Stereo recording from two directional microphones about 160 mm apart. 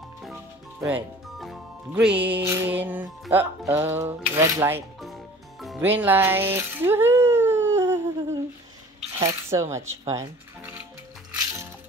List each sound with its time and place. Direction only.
0.8 s speech: 5° right (ahead or behind)
5.0 s music: centre (ahead or behind)
5.9 s a sound: 10° right (ahead or behind)
9.5 s speech: 15° right (ahead or behind)